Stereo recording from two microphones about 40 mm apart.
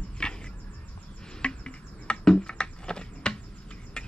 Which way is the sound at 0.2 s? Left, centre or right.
Left.